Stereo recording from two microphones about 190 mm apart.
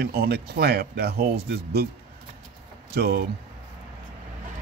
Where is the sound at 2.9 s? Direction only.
55° right (ahead or behind).